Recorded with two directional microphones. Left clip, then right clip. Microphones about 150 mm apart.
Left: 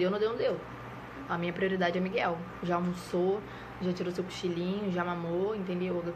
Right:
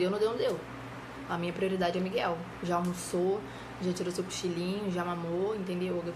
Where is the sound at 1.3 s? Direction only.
15° right (ahead or behind).